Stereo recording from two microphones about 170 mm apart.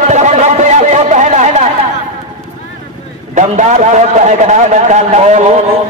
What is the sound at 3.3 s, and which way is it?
Speech, 45° right (ahead or behind).